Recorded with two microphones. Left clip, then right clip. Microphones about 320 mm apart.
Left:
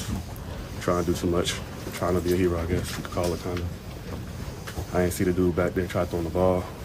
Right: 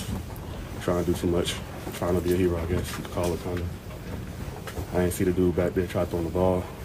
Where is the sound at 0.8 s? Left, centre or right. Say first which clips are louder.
Left 1 dB; centre.